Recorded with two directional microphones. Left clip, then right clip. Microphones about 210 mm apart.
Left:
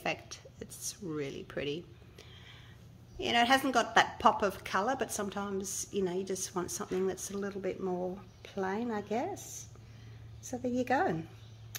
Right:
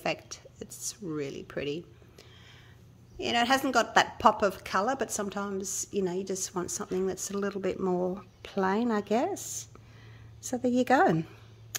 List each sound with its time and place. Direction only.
0.0 s a woman's voice: 30° right (ahead or behind); by 9.5 s 50° right (ahead or behind)
10.5 s speech: 50° right (ahead or behind)